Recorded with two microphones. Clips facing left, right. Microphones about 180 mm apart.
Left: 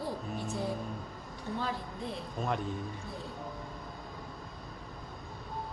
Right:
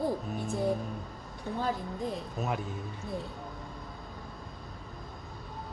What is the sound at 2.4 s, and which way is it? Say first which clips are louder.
Speech: even; 5° right (ahead or behind).